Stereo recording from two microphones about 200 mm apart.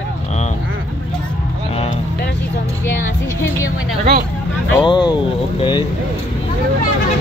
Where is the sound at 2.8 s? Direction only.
10° left (ahead or behind).